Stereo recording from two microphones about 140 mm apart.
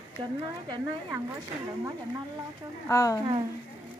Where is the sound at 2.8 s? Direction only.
25° left (ahead or behind).